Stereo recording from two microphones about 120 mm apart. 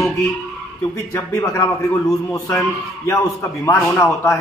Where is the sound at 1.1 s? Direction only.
25° left (ahead or behind).